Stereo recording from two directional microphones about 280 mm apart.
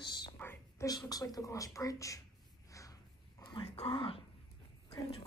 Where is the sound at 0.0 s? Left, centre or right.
Centre.